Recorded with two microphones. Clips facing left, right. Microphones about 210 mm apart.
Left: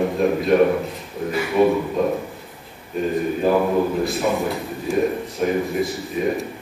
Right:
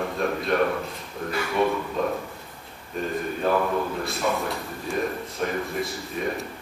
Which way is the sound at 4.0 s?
Centre (ahead or behind).